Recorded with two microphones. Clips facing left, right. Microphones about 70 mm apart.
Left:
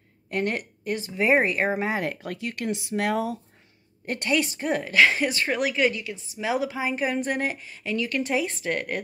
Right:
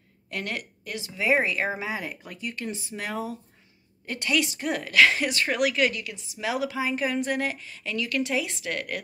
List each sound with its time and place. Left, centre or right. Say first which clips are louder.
0.3 s a woman's voice: left 6 dB; left
1.8 s speech: left 5 dB; left
4.0 s speech: left 2 dB; left